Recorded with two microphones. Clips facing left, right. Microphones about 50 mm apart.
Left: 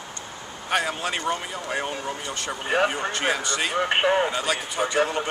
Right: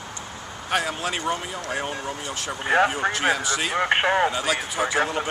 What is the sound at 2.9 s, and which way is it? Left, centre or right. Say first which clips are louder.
Speech: right 2 dB; centre.